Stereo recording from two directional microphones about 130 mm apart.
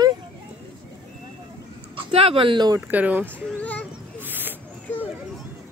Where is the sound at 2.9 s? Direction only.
10° right (ahead or behind).